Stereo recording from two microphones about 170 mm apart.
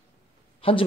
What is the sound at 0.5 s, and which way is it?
Speech, 30° left (ahead or behind).